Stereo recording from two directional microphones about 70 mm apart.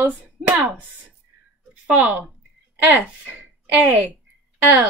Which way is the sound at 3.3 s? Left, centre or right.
Right.